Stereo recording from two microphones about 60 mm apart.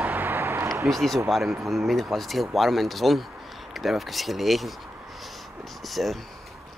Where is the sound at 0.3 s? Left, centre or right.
Right.